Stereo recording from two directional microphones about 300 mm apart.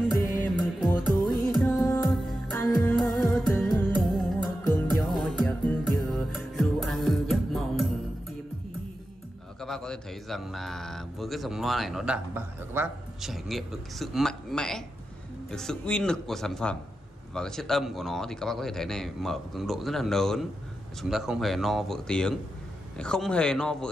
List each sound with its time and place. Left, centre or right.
0.4 s music: centre
1.7 s music: centre
2.0 s music: centre
9.6 s a man's voice: centre